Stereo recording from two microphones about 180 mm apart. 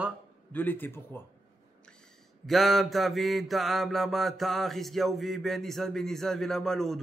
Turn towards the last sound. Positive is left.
turn(degrees=0)  # may be behind; listen again after turning